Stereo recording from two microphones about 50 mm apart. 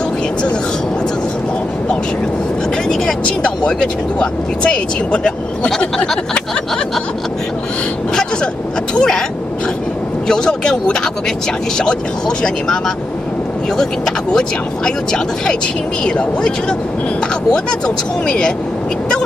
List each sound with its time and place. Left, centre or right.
3.3 s speech: centre
8.1 s vehicle: centre
8.9 s speech: centre
10.2 s speech: centre
16.0 s speech: centre